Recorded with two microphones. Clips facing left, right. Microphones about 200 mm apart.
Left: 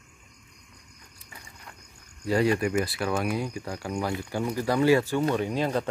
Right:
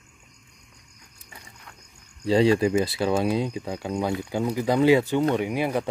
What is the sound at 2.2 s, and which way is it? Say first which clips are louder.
Speech: right 5 dB; 25° right (ahead or behind).